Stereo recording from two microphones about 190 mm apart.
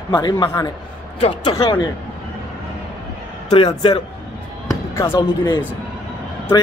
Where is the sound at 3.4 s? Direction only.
30° left (ahead or behind).